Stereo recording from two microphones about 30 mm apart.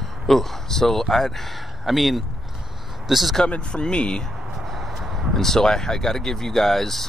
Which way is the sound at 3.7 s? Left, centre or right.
Left.